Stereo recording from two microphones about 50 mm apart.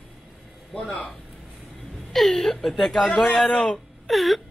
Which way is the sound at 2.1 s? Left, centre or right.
Centre.